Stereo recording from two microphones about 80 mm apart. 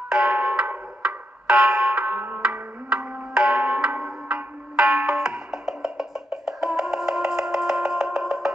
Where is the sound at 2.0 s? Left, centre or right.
Right.